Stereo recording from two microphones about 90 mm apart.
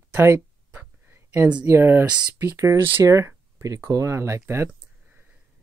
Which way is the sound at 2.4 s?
30° right (ahead or behind).